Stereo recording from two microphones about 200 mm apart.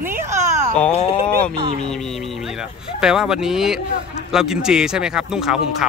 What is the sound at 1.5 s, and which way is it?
Speech, 25° right (ahead or behind).